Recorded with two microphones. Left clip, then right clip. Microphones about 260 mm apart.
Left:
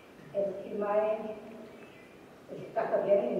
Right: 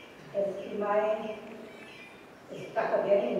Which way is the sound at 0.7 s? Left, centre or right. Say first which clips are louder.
Right 1 dB; centre.